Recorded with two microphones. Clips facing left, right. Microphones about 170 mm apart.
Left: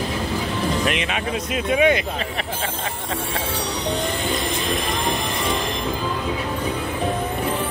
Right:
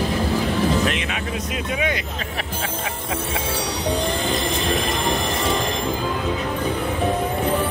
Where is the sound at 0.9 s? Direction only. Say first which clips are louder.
Left 2 dB; 20° left (ahead or behind).